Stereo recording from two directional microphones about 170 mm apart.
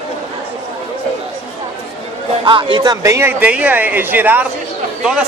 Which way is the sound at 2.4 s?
30° right (ahead or behind).